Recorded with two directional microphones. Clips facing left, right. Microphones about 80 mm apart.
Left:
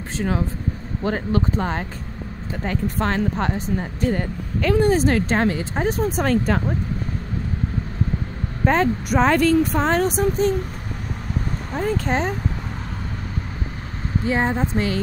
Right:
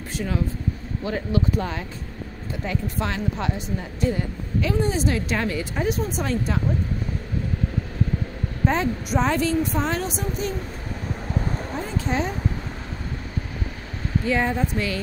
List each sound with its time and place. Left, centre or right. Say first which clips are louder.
1.0 s speech: left 3 dB; left
8.6 s speech: left 4 dB; left
11.7 s speech: left 6 dB; left
14.2 s speech: left 2 dB; left